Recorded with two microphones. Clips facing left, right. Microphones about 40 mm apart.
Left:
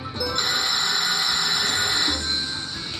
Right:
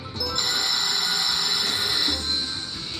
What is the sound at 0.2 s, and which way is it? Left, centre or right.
Music, centre.